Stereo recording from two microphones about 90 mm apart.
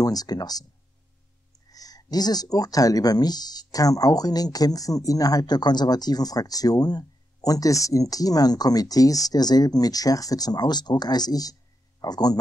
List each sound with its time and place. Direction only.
0.0 s speech: 45° left (ahead or behind)
1.7 s speech: 45° left (ahead or behind)